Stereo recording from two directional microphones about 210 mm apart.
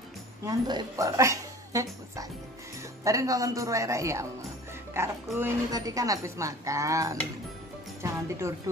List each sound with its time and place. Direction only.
0.5 s a woman's voice: 20° right (ahead or behind)